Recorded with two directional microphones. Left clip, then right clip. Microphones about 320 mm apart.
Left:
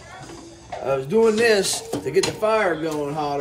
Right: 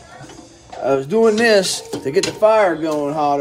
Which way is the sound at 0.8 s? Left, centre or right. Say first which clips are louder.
Right 4 dB; right.